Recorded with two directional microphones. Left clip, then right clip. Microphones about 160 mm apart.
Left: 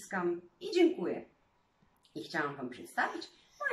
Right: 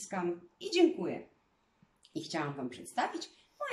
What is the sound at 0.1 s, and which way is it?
Speech, 10° right (ahead or behind).